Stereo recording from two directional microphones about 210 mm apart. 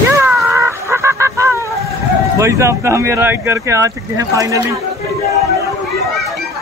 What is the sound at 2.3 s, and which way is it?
Speech, 15° right (ahead or behind).